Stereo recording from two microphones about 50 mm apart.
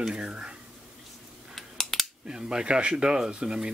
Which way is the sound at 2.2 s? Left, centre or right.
Centre.